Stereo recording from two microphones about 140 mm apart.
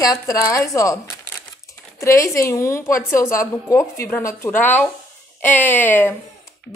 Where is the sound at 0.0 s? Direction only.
25° left (ahead or behind).